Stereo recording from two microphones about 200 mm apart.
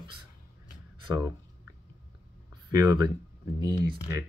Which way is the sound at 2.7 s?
20° right (ahead or behind).